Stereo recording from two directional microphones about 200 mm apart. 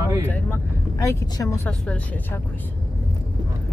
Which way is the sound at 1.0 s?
15° left (ahead or behind).